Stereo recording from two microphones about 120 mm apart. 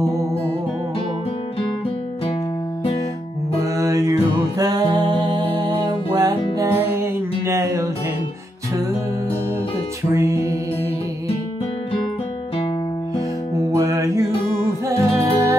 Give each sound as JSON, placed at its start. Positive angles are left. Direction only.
{"t": 3.5, "sound": "music", "side_deg": -25}
{"t": 6.6, "sound": "music", "side_deg": -25}
{"t": 10.1, "sound": "music", "side_deg": -25}
{"t": 13.7, "sound": "music", "side_deg": -25}